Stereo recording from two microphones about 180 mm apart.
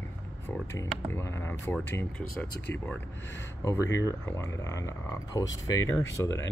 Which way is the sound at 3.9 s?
15° left (ahead or behind).